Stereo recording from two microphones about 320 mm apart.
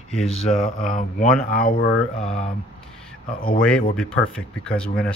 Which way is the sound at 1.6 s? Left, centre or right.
Left.